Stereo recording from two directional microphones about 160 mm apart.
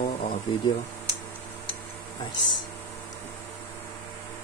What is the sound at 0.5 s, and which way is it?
Speech, 30° left (ahead or behind).